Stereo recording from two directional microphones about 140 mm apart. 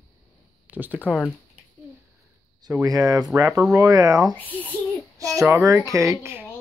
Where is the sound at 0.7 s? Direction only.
10° right (ahead or behind).